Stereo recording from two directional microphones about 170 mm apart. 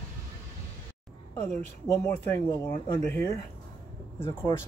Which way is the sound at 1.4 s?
15° left (ahead or behind).